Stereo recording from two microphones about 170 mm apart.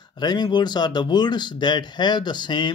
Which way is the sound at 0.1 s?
25° left (ahead or behind).